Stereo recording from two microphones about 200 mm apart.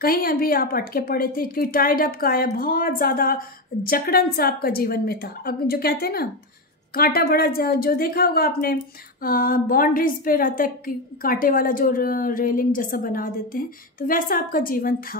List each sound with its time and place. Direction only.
0.0 s a woman's voice: 50° left (ahead or behind)